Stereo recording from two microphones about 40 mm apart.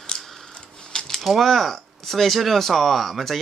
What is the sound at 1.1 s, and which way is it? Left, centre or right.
Speech, centre.